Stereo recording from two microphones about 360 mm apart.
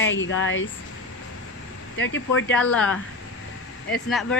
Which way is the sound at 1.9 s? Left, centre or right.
Left.